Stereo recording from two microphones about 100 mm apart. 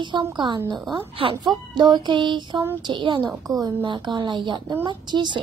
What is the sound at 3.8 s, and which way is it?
A child's voice, 50° right (ahead or behind).